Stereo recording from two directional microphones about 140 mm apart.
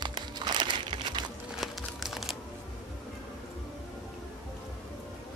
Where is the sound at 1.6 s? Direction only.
Centre (ahead or behind).